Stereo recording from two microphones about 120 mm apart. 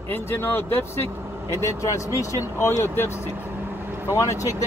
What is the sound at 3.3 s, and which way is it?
Vehicle, 15° right (ahead or behind).